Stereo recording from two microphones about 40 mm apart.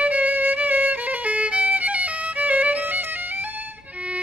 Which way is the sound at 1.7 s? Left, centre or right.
Right.